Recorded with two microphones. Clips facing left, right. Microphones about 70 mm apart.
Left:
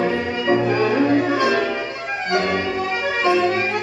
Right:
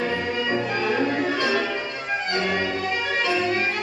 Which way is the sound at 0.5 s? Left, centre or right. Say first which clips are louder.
Left 9 dB; left.